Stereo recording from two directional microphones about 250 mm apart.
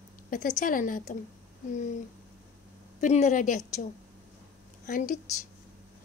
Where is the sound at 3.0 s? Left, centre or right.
Left.